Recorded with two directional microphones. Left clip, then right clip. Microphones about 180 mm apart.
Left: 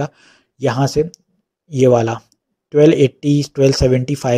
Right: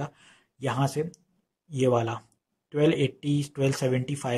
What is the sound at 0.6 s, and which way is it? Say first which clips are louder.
Speech: left 12 dB; 25° left (ahead or behind).